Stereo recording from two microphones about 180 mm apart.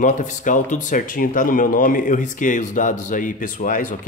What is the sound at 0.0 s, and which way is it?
Speech, 45° left (ahead or behind).